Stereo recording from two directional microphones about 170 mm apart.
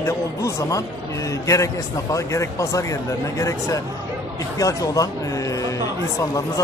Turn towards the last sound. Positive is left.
turn(degrees=20)  # may be behind; listen again after turning